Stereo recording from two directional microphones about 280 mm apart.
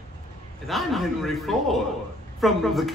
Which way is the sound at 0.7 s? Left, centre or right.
Centre.